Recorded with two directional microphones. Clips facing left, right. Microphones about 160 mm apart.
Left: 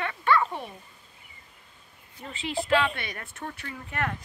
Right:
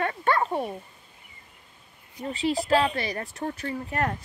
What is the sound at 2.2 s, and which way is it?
Speech, 40° right (ahead or behind).